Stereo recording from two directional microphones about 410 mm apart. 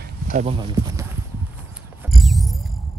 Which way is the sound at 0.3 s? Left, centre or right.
Centre.